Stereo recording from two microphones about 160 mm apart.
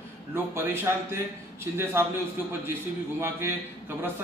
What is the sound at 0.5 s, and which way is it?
A man's voice, 15° right (ahead or behind).